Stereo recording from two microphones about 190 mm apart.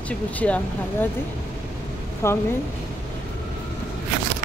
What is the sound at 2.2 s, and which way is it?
Speech, 15° left (ahead or behind).